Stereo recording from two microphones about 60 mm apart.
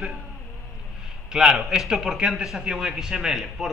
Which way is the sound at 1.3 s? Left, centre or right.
Centre.